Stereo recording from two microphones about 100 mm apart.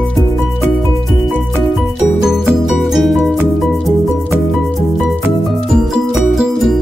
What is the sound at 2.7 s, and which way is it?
Music, centre (ahead or behind).